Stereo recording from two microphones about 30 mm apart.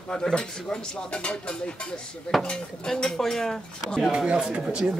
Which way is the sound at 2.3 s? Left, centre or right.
Centre.